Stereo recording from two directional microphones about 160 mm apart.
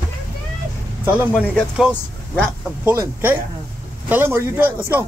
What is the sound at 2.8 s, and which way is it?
Speech, 15° right (ahead or behind).